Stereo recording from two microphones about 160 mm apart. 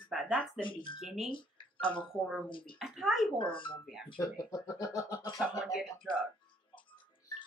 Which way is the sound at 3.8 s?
Centre (ahead or behind).